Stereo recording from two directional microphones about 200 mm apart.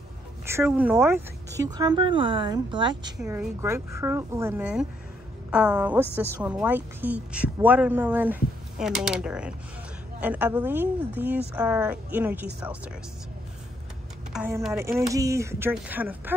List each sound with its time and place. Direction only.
0.7 s a woman's voice: 5° right (ahead or behind)
14.3 s a woman's voice: 5° right (ahead or behind)